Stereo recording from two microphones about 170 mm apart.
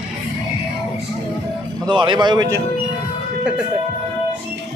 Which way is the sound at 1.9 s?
25° right (ahead or behind).